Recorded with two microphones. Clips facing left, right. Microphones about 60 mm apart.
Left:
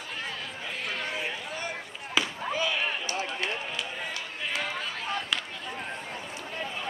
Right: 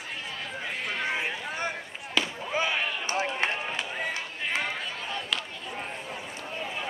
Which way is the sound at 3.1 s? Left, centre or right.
Right.